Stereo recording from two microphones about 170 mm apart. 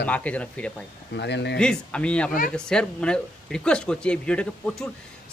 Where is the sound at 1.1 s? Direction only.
90° left.